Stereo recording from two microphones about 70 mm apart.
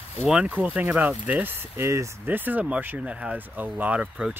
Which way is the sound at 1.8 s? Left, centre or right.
Right.